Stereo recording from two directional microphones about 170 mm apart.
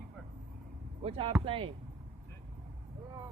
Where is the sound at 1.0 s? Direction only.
35° right (ahead or behind).